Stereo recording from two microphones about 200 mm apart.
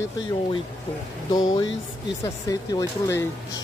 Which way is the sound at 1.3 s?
20° left (ahead or behind).